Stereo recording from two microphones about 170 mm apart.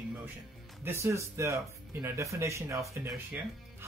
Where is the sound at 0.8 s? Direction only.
15° right (ahead or behind).